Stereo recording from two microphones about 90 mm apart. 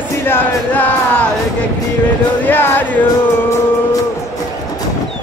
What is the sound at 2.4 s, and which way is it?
Music, 25° left (ahead or behind).